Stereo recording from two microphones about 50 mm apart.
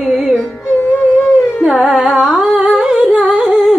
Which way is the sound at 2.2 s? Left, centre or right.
Centre.